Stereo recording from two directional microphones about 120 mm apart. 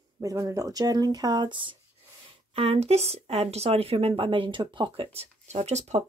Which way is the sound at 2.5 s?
55° right (ahead or behind).